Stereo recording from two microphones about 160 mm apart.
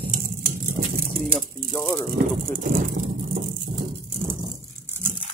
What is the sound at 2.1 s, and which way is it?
Speech, 65° right (ahead or behind).